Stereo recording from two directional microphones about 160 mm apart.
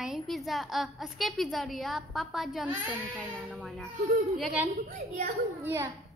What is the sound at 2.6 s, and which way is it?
Speech, 10° right (ahead or behind).